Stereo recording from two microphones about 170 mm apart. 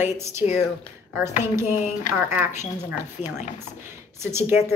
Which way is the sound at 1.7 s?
50° left (ahead or behind).